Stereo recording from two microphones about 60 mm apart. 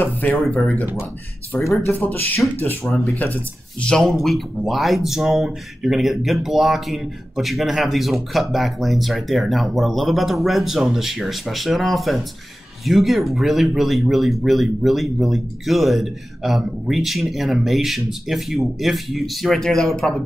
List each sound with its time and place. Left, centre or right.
0.0 s speech: left
0.4 s speech: centre
1.9 s speech: left
4.0 s speech: centre